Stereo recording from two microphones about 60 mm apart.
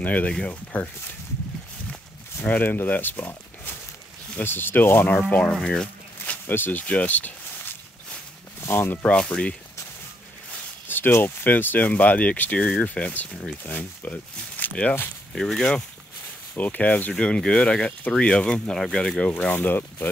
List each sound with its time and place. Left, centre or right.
0.0 s speech: left
2.4 s speech: left
5.5 s a sound: centre
6.4 s speech: left
8.5 s a sound: left
8.9 s speech: left
10.5 s a sound: left
11.2 s speech: left
15.3 s speech: centre
16.5 s speech: left
17.1 s speech: centre
19.5 s speech: left